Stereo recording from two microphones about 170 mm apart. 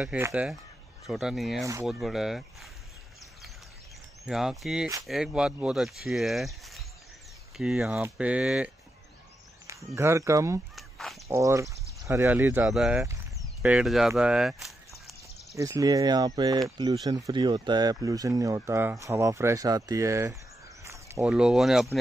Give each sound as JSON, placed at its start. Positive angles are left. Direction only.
{"t": 0.0, "sound": "speech", "side_deg": -5}
{"t": 1.6, "sound": "speech", "side_deg": -20}
{"t": 1.9, "sound": "speech", "side_deg": 0}
{"t": 4.3, "sound": "speech", "side_deg": -5}
{"t": 9.9, "sound": "speech", "side_deg": -15}
{"t": 10.8, "sound": "fowl", "side_deg": 0}
{"t": 11.2, "sound": "speech", "side_deg": -20}
{"t": 15.5, "sound": "speech", "side_deg": -20}
{"t": 20.8, "sound": "a sound", "side_deg": -15}
{"t": 21.2, "sound": "speech", "side_deg": -5}